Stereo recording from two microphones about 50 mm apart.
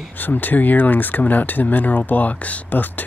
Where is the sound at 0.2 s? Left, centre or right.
Left.